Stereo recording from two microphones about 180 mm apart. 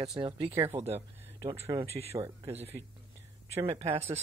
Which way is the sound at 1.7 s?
30° right (ahead or behind).